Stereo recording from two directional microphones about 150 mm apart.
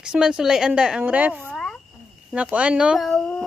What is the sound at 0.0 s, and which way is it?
Speech, 5° right (ahead or behind).